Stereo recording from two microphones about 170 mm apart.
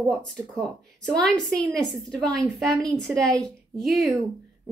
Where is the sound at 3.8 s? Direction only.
Centre (ahead or behind).